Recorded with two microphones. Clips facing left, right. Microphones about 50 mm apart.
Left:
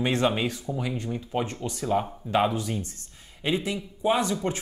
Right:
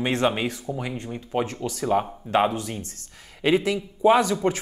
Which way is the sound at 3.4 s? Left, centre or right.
Right.